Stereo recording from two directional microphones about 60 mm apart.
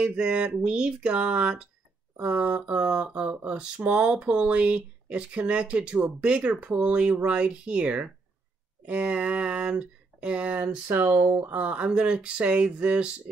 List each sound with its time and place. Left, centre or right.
0.0 s speech: centre; by 11.4 s right
11.5 s speech: right